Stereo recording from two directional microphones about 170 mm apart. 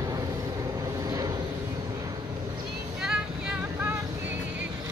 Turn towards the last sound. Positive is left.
turn(degrees=-10)  # may be behind; listen again after turning